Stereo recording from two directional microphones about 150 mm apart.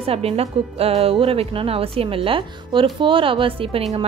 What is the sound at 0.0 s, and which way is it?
A woman's voice, 40° right (ahead or behind).